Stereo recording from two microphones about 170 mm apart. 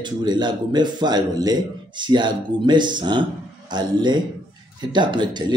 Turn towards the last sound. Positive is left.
turn(degrees=-25)  # may be behind; listen again after turning